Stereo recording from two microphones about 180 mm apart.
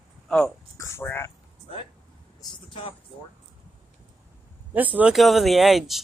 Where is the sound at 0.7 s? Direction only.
15° left (ahead or behind).